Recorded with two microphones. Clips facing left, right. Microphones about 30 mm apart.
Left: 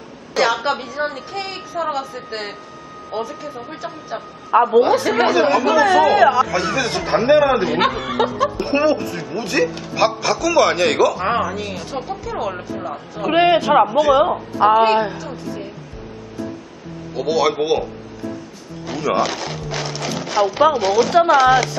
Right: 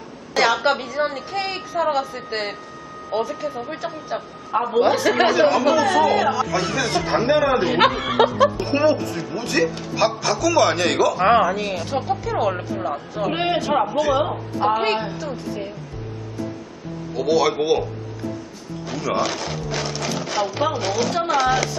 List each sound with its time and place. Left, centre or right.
0.3 s a woman's voice: centre
5.8 s a woman's voice: centre
7.7 s speech: centre
8.5 s speech: centre
11.1 s speech: centre
13.3 s speech: centre
17.1 s speech: centre
18.9 s speech: centre